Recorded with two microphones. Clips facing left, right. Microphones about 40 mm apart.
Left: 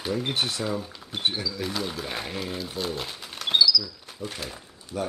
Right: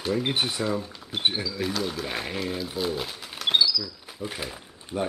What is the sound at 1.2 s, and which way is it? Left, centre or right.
Speech, centre.